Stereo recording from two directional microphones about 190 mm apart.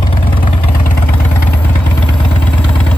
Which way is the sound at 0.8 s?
45° left (ahead or behind).